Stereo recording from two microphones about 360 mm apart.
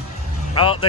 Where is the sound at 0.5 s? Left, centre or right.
Centre.